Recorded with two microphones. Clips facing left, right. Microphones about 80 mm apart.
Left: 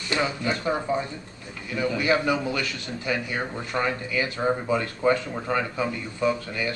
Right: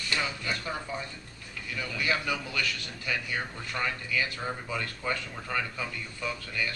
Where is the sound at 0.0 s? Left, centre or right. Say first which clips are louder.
Left 7 dB; left.